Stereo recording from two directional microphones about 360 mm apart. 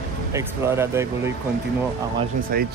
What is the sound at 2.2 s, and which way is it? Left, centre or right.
Speech, right.